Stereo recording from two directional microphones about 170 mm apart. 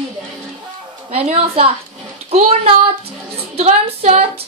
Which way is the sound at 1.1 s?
35° right (ahead or behind).